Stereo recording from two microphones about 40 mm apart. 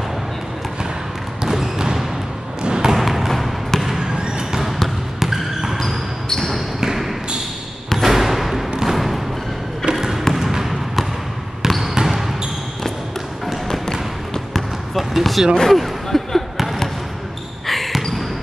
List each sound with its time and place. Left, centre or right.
1.4 s basketball bounce: centre
2.6 s a sound: centre
3.0 s a sound: centre
3.8 s basketball bounce: centre
4.6 s basketball bounce: centre
6.2 s basketball bounce: centre
6.8 s basketball bounce: centre
8.0 s a sound: centre
8.8 s music: centre
9.9 s basketball bounce: centre
10.4 s trickle: centre
15.0 s basketball bounce: centre
15.5 s a sound: centre
16.5 s basketball bounce: centre